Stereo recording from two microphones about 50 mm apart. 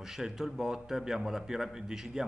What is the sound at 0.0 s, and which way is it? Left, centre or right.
A man's voice, centre.